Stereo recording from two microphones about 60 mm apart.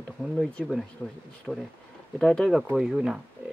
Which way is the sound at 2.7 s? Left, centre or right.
Centre.